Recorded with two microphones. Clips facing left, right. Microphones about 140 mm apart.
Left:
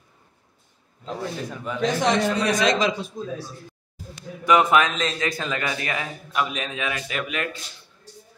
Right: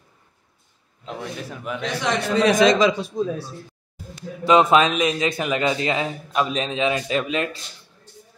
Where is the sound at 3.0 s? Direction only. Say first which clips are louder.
Right 6 dB; 75° right (ahead or behind).